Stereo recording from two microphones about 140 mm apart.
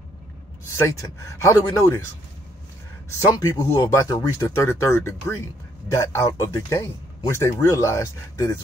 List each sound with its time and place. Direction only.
0.7 s speech: 20° left (ahead or behind)
3.1 s speech: 20° left (ahead or behind)